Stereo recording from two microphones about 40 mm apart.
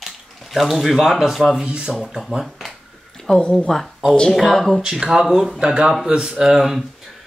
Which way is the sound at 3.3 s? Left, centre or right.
Centre.